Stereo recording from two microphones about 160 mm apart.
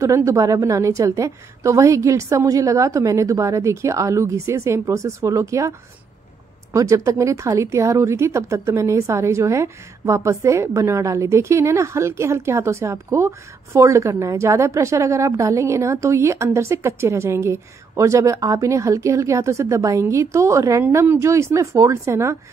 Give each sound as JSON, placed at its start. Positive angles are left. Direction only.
{"t": 0.0, "sound": "a woman's voice", "side_deg": -20}